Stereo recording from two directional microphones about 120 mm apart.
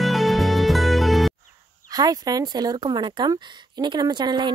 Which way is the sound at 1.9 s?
30° right (ahead or behind).